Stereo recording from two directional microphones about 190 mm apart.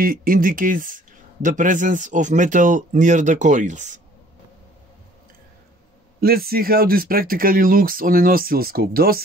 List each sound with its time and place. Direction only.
0.0 s a man's voice: 50° right (ahead or behind)
6.2 s speech: 55° right (ahead or behind)